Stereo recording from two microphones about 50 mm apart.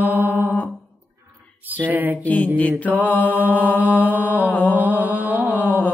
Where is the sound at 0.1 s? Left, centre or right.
Right.